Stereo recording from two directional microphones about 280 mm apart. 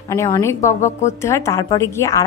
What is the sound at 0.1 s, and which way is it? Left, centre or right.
Speech, centre.